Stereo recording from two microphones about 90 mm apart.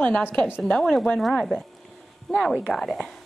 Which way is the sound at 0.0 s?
20° left (ahead or behind).